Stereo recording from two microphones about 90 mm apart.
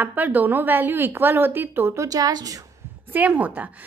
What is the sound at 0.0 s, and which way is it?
Speech, 20° right (ahead or behind).